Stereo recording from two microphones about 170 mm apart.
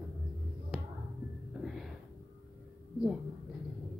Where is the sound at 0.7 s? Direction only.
10° right (ahead or behind).